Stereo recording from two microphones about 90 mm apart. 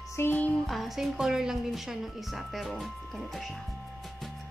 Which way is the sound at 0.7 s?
Centre (ahead or behind).